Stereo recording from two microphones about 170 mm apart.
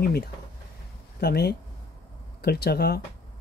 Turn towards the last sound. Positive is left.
turn(degrees=70)  # may be behind; listen again after turning